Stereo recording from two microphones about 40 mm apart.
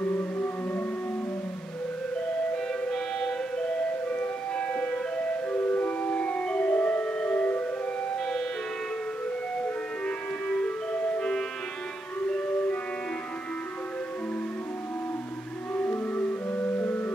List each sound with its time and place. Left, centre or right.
0.0 s music: left
2.9 s music: centre
3.5 s music: left
7.3 s civil defense siren: left
10.6 s music: left
16.4 s music: left